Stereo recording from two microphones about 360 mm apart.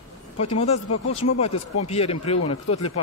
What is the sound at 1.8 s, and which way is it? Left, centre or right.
Speech, centre.